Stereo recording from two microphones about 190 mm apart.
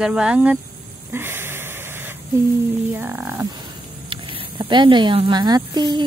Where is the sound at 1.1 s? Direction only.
10° right (ahead or behind).